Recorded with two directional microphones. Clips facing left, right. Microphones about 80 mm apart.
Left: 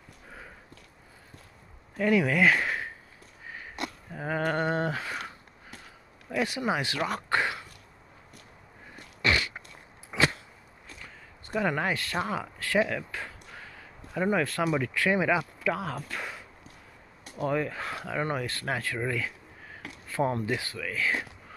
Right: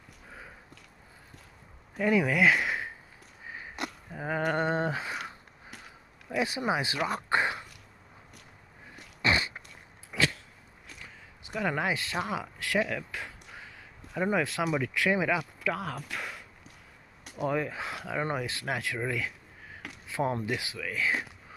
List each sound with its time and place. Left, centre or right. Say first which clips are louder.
2.0 s speech: left 1 dB; centre
3.4 s sniff: even; centre
4.1 s a sound: left 1 dB; centre
4.7 s speech: even; centre
6.3 s speech: left 1 dB; right
9.2 s a sound: even; right
11.5 s speech: left 2 dB; centre
11.9 s speech: left 1 dB; centre
12.8 s a sound: left 2 dB; centre
14.1 s speech: left 1 dB; centre
14.4 s speech: left 2 dB; centre
14.7 s speech: left 1 dB; centre
17.5 s speech: left 1 dB; centre